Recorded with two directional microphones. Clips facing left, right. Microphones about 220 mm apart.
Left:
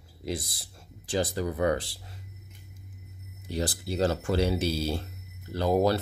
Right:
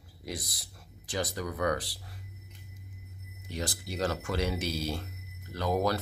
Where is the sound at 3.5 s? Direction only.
35° left (ahead or behind).